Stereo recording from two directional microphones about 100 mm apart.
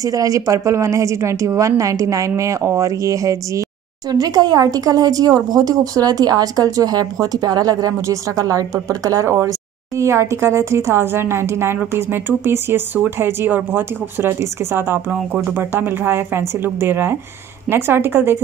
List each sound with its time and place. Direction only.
0.0 s speech: 35° right (ahead or behind)
15.0 s speech: 10° right (ahead or behind)
15.5 s speech: 20° right (ahead or behind)